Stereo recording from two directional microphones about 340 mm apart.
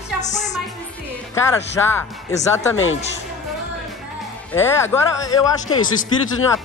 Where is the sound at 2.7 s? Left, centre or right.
Left.